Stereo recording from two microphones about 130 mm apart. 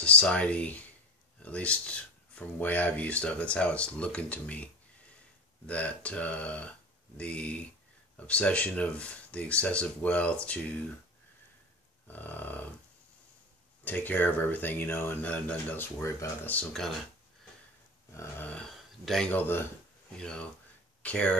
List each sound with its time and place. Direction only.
0.0 s speech: 10° left (ahead or behind)
5.7 s speech: 10° left (ahead or behind)
12.1 s speech: 15° left (ahead or behind)
13.8 s speech: 15° left (ahead or behind)
18.1 s a sound: 20° left (ahead or behind)
18.5 s speech: 5° left (ahead or behind)